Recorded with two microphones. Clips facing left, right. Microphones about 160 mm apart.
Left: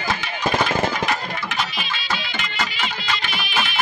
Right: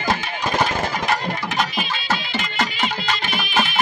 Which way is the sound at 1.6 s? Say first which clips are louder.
Right 3 dB; 45° right (ahead or behind).